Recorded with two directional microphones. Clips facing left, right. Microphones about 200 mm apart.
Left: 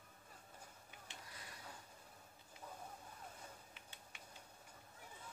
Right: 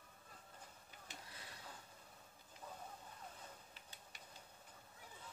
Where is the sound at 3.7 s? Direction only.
35° right (ahead or behind).